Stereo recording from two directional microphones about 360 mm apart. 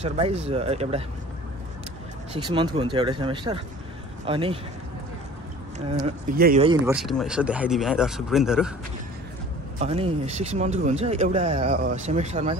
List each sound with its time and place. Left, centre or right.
0.0 s speech: centre
2.3 s speech: centre
5.9 s speech: centre
6.9 s speech: centre
9.8 s speech: centre